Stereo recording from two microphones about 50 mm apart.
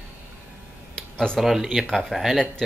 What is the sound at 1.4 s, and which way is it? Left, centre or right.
Speech, centre.